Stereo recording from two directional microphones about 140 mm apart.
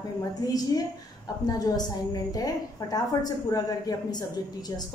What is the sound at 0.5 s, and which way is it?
A man's voice, 25° left (ahead or behind).